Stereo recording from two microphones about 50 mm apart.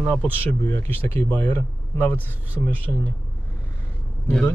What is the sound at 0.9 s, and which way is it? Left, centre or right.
Speech, left.